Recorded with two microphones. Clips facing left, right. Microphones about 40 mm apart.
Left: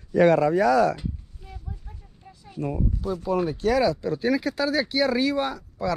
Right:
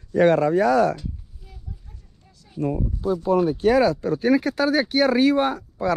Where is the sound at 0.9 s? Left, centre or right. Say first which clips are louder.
Even; left.